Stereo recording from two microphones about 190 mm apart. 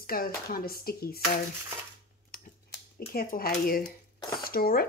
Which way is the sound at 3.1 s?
50° left (ahead or behind).